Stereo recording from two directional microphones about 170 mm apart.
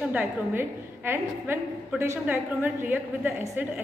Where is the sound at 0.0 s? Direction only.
10° right (ahead or behind).